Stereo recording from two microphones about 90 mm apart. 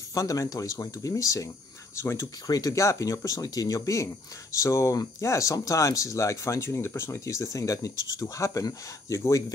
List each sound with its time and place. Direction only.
0.1 s speech: 40° left (ahead or behind)
2.4 s speech: 45° left (ahead or behind)